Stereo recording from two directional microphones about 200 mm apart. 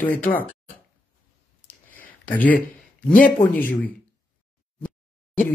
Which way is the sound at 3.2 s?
10° left (ahead or behind).